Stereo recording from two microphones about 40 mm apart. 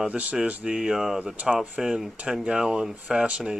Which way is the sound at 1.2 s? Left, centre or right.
Right.